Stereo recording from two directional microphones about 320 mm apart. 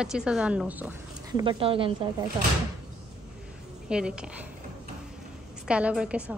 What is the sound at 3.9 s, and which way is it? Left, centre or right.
Speech, centre.